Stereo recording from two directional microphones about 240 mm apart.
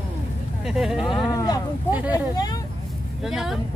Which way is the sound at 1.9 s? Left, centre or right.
Centre.